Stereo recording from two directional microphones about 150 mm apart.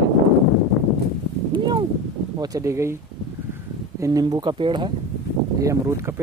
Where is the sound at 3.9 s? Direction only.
25° right (ahead or behind).